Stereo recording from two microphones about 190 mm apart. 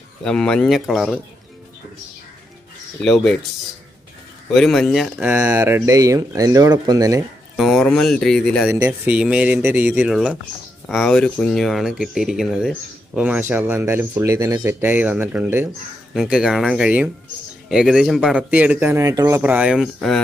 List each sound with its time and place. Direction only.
0.2 s speech: 5° left (ahead or behind)
3.0 s speech: 5° left (ahead or behind)
4.6 s speech: centre (ahead or behind)
5.3 s speech: 15° right (ahead or behind)
7.5 s speech: centre (ahead or behind)
8.7 s speech: 10° right (ahead or behind)